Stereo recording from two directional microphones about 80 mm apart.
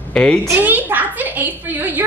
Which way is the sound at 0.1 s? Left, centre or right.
Centre.